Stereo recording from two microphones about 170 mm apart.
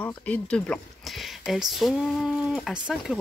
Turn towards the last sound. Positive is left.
turn(degrees=0)  # may be behind; listen again after turning